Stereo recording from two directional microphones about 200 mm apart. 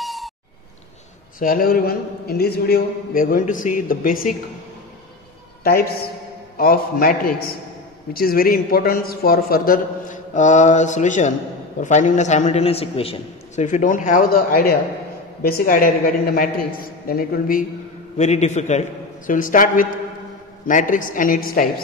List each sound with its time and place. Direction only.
0.0 s a sound: centre (ahead or behind)
1.4 s a man's voice: 45° left (ahead or behind)
5.6 s a woman's voice: 45° left (ahead or behind)
18.1 s a man's voice: 35° left (ahead or behind)